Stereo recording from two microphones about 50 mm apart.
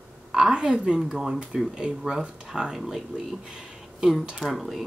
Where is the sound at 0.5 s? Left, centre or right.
Right.